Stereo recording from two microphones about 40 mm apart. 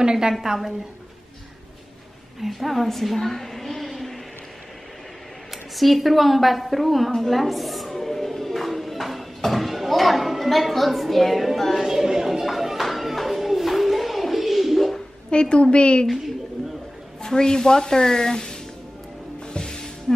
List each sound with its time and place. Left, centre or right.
0.0 s a woman's voice: centre
0.3 s a woman's voice: centre
2.4 s a woman's voice: centre
5.5 s speech: centre
7.2 s music: centre
11.8 s a sound: centre
15.3 s a woman's voice: left
17.2 s speech: centre
19.4 s music: centre